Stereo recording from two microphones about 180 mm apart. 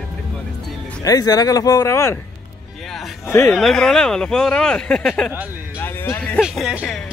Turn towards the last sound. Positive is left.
turn(degrees=0)  # may be behind; listen again after turning